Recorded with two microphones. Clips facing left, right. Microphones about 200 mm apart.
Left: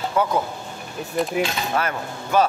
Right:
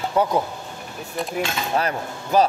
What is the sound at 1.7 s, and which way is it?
Speech, 35° right (ahead or behind).